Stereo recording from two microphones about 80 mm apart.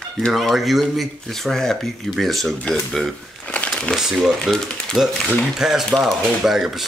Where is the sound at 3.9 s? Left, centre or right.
Centre.